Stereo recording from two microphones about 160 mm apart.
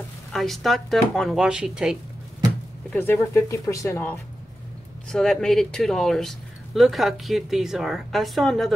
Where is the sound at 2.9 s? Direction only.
15° left (ahead or behind).